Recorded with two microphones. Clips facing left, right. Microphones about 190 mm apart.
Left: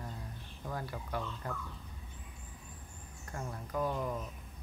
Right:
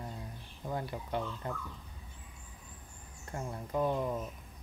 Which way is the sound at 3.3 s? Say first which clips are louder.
Right 3 dB; 20° right (ahead or behind).